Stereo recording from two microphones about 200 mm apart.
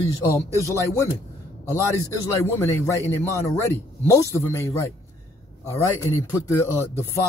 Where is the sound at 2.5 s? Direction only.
15° left (ahead or behind).